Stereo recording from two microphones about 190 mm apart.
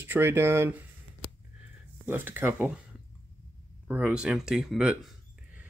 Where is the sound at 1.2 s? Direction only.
15° left (ahead or behind).